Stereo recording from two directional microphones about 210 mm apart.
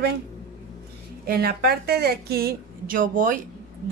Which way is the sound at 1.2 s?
45° right (ahead or behind).